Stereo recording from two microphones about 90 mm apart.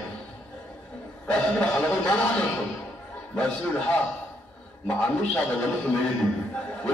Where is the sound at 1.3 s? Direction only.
15° left (ahead or behind).